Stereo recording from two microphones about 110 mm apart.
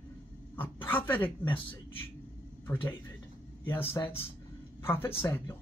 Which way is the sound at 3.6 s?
20° left (ahead or behind).